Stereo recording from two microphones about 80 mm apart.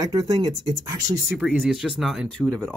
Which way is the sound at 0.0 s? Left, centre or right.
Right.